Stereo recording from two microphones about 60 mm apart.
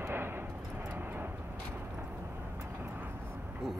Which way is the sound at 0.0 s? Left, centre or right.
Right.